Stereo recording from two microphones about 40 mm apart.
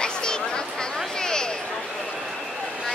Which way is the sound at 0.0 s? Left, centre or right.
Centre.